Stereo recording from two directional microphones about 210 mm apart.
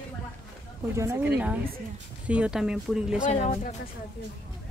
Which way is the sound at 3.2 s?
30° left (ahead or behind).